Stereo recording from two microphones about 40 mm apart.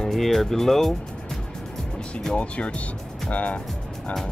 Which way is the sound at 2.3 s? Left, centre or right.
Left.